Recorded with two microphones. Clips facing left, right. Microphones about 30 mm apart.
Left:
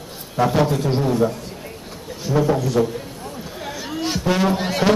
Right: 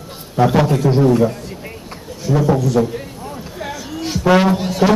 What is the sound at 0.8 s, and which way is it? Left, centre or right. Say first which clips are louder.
Speech: right 6 dB; right.